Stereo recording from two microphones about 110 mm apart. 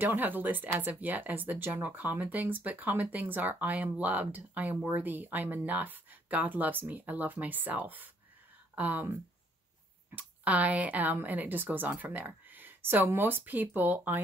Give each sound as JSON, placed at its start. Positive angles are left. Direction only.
{"t": 0.0, "sound": "speech", "side_deg": -15}
{"t": 10.1, "sound": "speech", "side_deg": -15}